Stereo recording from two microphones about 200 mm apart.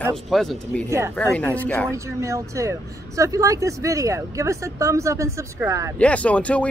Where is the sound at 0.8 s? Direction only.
15° right (ahead or behind).